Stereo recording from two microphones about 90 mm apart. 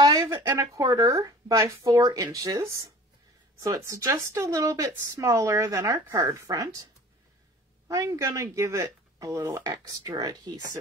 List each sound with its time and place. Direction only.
0.2 s speech: 35° right (ahead or behind)
7.9 s speech: 35° right (ahead or behind)
9.7 s speech: 50° right (ahead or behind)